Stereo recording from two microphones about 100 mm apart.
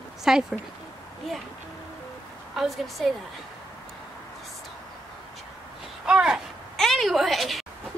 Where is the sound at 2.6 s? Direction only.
Centre (ahead or behind).